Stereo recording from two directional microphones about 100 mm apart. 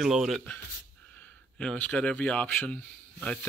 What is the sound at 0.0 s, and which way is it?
Speech, centre (ahead or behind).